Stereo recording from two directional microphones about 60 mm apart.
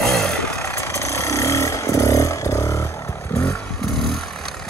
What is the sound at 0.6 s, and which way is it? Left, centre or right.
Vehicle, left.